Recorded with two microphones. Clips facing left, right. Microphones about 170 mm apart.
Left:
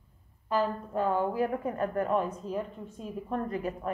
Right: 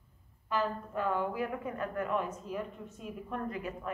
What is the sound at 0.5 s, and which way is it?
A woman's voice, 35° left (ahead or behind).